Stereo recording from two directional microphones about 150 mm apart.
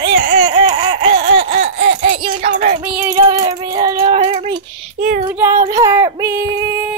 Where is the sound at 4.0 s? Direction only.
40° right (ahead or behind).